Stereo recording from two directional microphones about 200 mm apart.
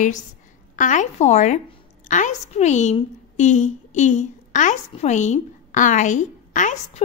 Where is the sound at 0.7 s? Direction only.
40° left (ahead or behind).